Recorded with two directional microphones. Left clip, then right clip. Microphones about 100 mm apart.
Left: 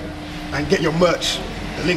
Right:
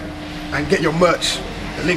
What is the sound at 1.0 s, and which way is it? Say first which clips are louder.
Speech: right 2 dB; 10° right (ahead or behind).